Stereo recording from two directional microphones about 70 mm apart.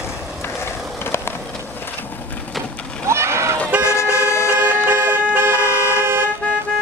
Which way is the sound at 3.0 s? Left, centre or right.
Right.